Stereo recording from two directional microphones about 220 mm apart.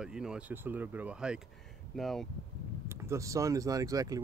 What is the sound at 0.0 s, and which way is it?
Speech, 5° right (ahead or behind).